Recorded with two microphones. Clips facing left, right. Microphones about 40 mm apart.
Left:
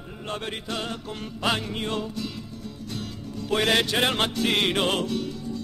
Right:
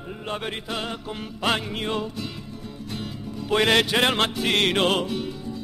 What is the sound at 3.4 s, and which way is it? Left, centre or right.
Music, right.